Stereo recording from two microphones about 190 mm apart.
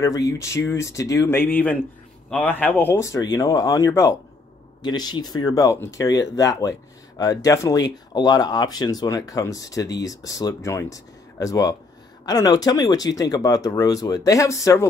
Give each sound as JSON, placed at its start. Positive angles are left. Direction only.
{"t": 0.0, "sound": "speech", "side_deg": 15}